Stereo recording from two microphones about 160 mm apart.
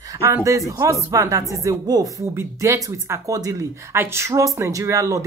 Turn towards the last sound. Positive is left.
turn(degrees=-20)  # may be behind; listen again after turning